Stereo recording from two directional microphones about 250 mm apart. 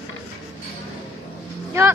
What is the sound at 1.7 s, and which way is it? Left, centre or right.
Speech, centre.